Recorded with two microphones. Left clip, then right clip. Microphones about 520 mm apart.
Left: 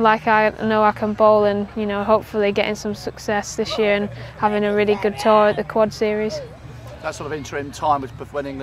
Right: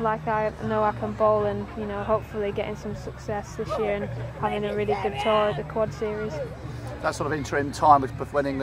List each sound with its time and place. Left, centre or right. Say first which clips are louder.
0.0 s speech: left 10 dB; left
7.0 s speech: even; centre